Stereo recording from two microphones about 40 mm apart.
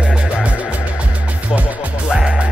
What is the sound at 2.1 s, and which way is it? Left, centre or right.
Music, centre.